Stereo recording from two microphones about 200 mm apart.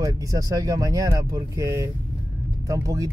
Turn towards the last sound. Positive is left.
turn(degrees=-20)  # may be behind; listen again after turning